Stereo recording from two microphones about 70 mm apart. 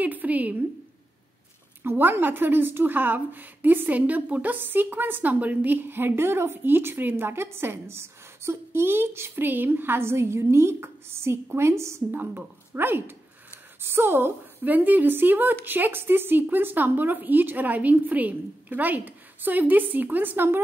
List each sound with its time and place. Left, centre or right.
0.0 s a sound: right
1.8 s a woman's voice: right
12.1 s a woman's voice: right